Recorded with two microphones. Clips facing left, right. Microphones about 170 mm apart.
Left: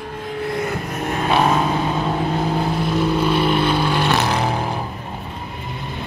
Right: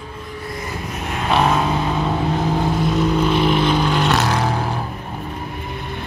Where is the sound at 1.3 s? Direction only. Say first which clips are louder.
Right 1 dB; 10° left (ahead or behind).